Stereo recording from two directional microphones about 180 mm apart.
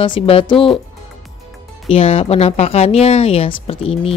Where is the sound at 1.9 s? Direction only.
35° left (ahead or behind).